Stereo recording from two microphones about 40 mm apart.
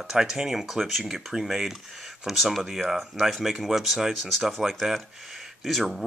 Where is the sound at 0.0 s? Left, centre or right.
Centre.